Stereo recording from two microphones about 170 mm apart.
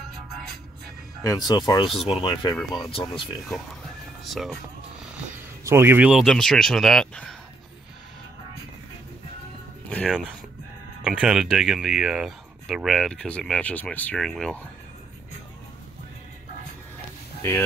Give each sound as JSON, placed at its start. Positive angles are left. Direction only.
{"t": 1.2, "sound": "speech", "side_deg": 20}
{"t": 4.2, "sound": "speech", "side_deg": 0}
{"t": 5.6, "sound": "speech", "side_deg": -15}
{"t": 9.8, "sound": "a sound", "side_deg": 5}
{"t": 11.1, "sound": "speech", "side_deg": -5}
{"t": 17.4, "sound": "speech", "side_deg": 15}